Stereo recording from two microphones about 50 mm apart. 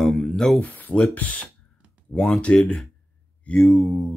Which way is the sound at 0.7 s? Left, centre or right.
Left.